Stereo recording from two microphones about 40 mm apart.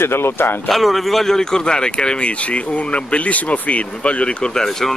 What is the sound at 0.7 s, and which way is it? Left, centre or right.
Speech, centre.